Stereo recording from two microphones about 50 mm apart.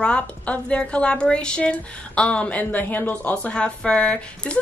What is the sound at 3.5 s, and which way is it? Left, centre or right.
A woman's voice, centre.